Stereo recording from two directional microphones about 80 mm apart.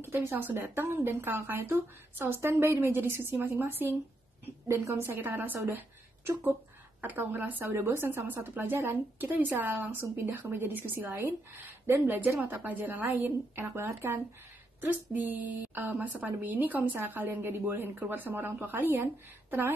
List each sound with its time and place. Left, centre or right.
0.0 s speech: right
4.6 s speech: right
7.0 s speech: right
7.6 s speech: right